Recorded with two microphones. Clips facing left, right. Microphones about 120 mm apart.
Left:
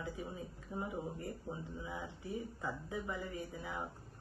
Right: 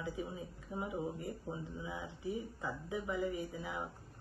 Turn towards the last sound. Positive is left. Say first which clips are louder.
# right 2 dB
turn(degrees=-15)  # may be behind; listen again after turning